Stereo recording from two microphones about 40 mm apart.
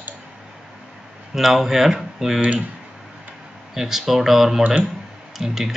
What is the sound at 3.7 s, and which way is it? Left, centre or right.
Speech, centre.